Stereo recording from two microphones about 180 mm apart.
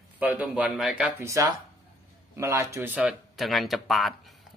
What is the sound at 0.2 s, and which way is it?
Speech, 5° right (ahead or behind).